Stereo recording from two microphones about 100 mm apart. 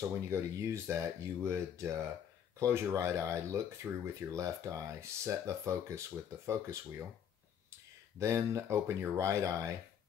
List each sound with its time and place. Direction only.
0.3 s speech: 30° right (ahead or behind)
8.2 s speech: 30° right (ahead or behind)